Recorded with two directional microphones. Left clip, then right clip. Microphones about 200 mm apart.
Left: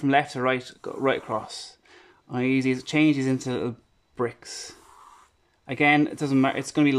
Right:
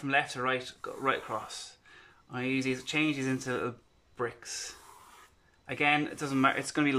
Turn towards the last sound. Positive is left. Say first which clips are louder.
# left 5 dB
turn(degrees=15)  # may be behind; listen again after turning